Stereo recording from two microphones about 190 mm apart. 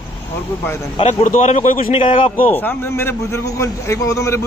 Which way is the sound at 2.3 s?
10° left (ahead or behind).